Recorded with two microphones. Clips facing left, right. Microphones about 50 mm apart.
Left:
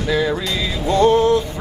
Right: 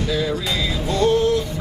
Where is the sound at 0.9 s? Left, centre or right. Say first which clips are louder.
Left 4 dB; left.